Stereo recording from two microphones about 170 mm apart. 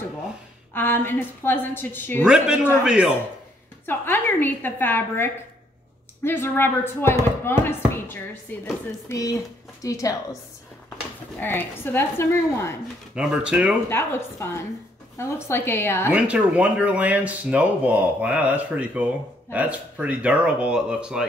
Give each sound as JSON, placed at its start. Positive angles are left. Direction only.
{"t": 0.7, "sound": "speech", "side_deg": 10}
{"t": 2.2, "sound": "speech", "side_deg": -5}
{"t": 3.8, "sound": "speech", "side_deg": 10}
{"t": 11.3, "sound": "speech", "side_deg": 10}
{"t": 13.1, "sound": "speech", "side_deg": -5}
{"t": 13.8, "sound": "speech", "side_deg": 15}
{"t": 16.1, "sound": "speech", "side_deg": -10}